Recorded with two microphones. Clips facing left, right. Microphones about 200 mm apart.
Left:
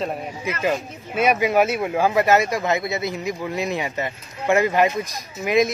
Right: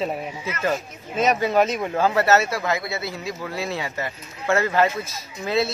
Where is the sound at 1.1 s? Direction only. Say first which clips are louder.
Left 1 dB; 10° left (ahead or behind).